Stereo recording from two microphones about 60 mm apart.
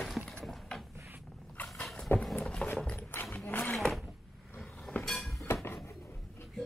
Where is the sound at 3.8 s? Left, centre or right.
Centre.